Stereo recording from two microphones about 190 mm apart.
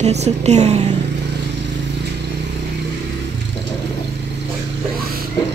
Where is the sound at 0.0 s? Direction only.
35° right (ahead or behind).